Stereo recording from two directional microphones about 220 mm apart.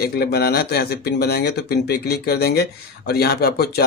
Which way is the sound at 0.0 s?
45° left (ahead or behind).